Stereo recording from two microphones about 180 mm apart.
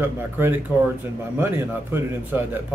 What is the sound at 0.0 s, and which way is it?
A man's voice, 10° right (ahead or behind).